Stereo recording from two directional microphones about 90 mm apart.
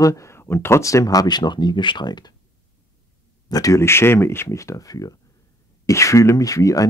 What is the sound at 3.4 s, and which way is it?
Speech, 45° left (ahead or behind).